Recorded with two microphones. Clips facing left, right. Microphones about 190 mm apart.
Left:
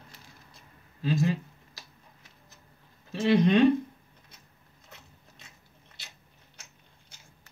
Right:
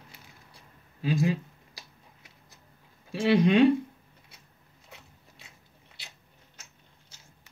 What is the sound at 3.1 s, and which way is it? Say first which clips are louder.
Speech: right 1 dB; 10° right (ahead or behind).